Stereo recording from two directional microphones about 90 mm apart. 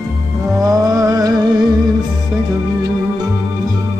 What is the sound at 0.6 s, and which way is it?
Mantra, 40° right (ahead or behind).